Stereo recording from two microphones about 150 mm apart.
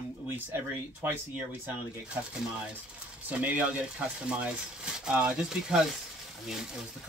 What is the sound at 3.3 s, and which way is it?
Speech, 10° right (ahead or behind).